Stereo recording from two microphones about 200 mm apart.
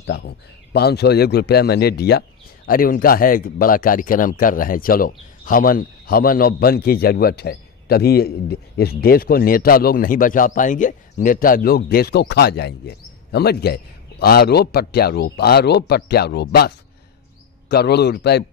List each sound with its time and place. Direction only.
0.0 s a man's voice: 55° left (ahead or behind)